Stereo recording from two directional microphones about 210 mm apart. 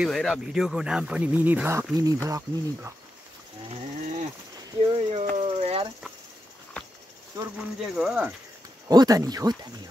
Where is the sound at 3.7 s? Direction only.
30° right (ahead or behind).